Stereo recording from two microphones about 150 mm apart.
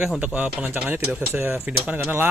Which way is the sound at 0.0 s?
5° right (ahead or behind).